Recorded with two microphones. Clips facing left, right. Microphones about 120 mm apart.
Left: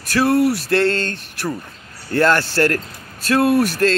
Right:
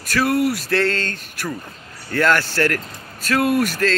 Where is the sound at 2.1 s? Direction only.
30° left (ahead or behind).